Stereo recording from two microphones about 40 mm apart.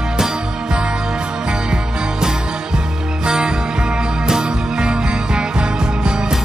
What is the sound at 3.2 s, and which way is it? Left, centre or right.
Music, centre.